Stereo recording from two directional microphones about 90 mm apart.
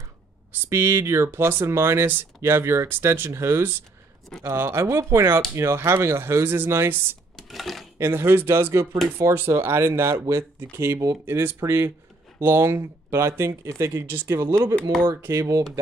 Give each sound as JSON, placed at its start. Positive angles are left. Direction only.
{"t": 0.5, "sound": "speech", "side_deg": -30}
{"t": 7.3, "sound": "coin", "side_deg": 0}
{"t": 8.0, "sound": "speech", "side_deg": -25}